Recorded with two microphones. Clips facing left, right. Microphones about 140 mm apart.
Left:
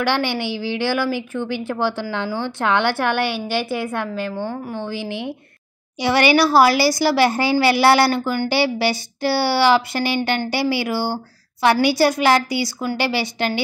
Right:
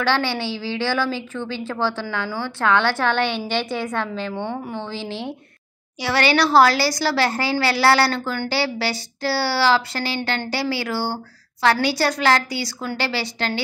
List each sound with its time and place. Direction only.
0.0 s a woman's voice: 15° left (ahead or behind)
6.3 s a woman's voice: 5° left (ahead or behind)